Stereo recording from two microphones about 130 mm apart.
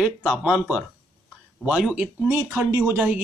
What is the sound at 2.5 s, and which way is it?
Speech, 20° right (ahead or behind).